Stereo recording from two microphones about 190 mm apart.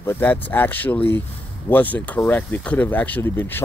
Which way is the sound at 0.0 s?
10° left (ahead or behind).